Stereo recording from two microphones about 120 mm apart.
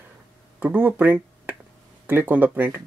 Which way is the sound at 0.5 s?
15° right (ahead or behind).